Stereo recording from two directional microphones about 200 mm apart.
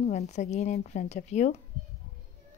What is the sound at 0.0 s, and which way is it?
A woman's voice, 35° left (ahead or behind).